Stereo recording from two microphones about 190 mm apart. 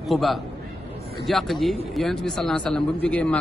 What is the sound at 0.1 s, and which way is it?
Speech, centre (ahead or behind).